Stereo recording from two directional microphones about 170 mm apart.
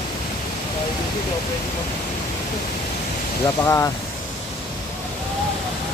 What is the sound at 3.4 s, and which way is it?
Speech, 20° left (ahead or behind).